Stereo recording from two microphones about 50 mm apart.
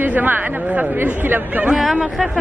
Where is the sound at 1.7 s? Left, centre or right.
Centre.